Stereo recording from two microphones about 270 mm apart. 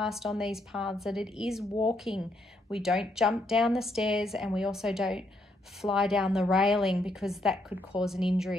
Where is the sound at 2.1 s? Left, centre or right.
Centre.